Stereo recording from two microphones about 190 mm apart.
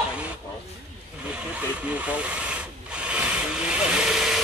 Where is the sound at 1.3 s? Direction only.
5° right (ahead or behind).